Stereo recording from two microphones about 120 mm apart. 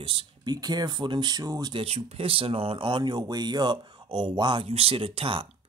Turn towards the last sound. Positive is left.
turn(degrees=-50)  # may be behind; listen again after turning